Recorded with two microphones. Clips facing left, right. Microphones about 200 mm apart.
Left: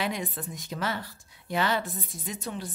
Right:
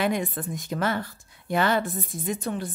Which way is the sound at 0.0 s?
50° right (ahead or behind).